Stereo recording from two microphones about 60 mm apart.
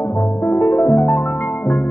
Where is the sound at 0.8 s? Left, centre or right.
Left.